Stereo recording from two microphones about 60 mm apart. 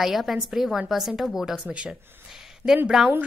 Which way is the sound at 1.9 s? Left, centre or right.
Centre.